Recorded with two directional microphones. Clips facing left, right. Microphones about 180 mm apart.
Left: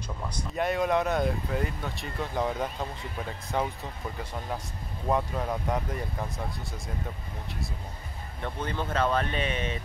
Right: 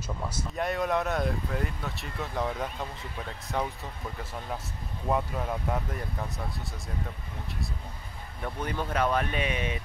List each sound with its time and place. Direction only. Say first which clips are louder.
0.3 s speech: left 3 dB; centre (ahead or behind)
8.4 s speech: even; 10° right (ahead or behind)